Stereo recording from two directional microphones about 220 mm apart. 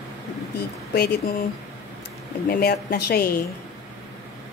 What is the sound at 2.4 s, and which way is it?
Speech, 45° left (ahead or behind).